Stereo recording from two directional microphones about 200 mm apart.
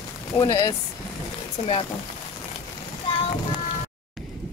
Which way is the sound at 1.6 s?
30° left (ahead or behind).